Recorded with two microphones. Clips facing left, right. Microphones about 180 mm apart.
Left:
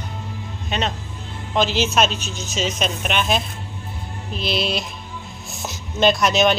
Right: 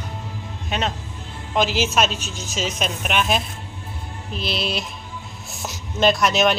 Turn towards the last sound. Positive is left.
turn(degrees=-5)  # may be behind; listen again after turning